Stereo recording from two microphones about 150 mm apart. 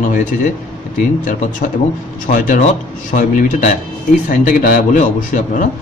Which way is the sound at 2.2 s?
65° left (ahead or behind).